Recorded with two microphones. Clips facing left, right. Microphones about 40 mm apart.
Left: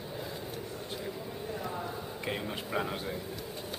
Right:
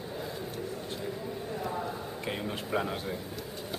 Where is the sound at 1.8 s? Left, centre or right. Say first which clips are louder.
Right 2 dB; centre.